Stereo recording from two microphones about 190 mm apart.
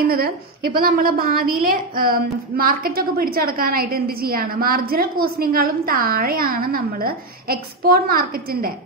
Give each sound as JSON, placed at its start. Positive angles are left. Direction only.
{"t": 0.7, "sound": "a woman's voice", "side_deg": -50}